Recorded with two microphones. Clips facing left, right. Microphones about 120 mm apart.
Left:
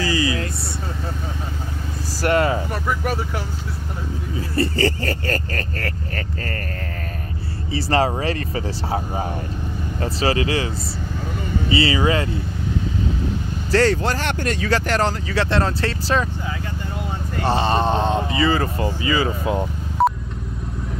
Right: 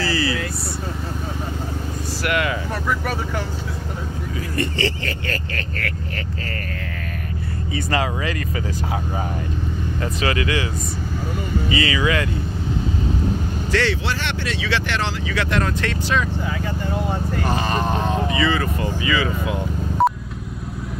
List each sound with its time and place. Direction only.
0.0 s vehicle: 20° left (ahead or behind)
2.2 s vehicle: 35° left (ahead or behind)
4.6 s speech: 40° left (ahead or behind)
7.7 s speech: 35° left (ahead or behind)
11.7 s speech: 30° left (ahead or behind)
13.7 s speech: 40° left (ahead or behind)
17.4 s speech: 30° left (ahead or behind)
20.0 s telephone dialing: centre (ahead or behind)